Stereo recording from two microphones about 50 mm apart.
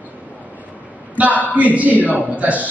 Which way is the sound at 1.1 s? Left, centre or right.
Right.